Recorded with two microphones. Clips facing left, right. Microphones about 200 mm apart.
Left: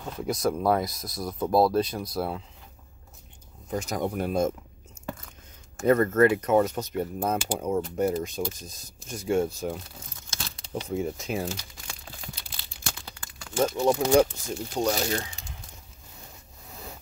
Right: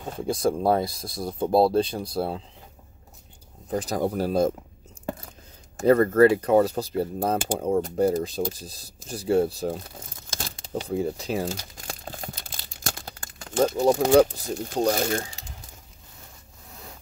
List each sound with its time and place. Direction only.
0.1 s speech: 30° right (ahead or behind)
3.7 s speech: 35° right (ahead or behind)
5.8 s speech: 35° right (ahead or behind)
11.4 s crumpling: 45° right (ahead or behind)
14.7 s speech: 55° right (ahead or behind)